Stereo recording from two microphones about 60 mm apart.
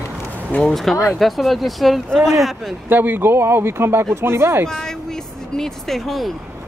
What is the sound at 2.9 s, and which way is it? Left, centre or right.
Speech, right.